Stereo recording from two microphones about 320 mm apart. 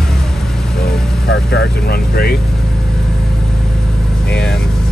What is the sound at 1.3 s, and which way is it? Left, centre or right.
Speech, left.